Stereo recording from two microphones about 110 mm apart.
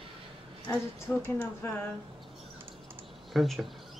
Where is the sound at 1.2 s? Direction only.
15° left (ahead or behind).